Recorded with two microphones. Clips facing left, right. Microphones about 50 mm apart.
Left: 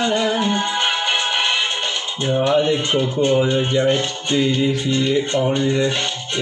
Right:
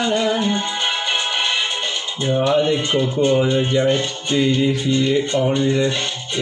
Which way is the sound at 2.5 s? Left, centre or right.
Centre.